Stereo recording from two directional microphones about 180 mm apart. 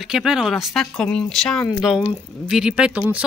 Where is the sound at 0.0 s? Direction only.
5° right (ahead or behind).